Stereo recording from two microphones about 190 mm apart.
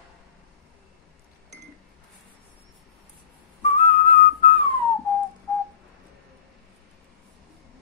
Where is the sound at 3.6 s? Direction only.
35° left (ahead or behind).